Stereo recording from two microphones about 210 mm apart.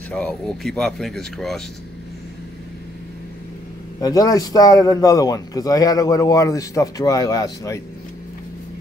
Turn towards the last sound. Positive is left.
turn(degrees=15)  # may be behind; listen again after turning